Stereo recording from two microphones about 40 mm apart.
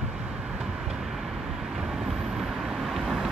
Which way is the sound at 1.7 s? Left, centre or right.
Centre.